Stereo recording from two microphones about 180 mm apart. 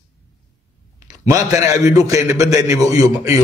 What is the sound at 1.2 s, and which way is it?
A man's voice, 20° right (ahead or behind).